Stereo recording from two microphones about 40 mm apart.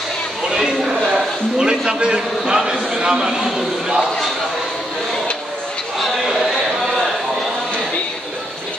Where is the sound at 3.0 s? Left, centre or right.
Centre.